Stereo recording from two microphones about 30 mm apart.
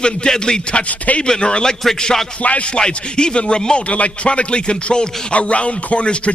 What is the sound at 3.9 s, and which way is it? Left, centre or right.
Speech, left.